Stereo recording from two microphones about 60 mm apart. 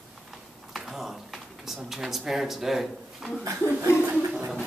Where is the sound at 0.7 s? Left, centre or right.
Centre.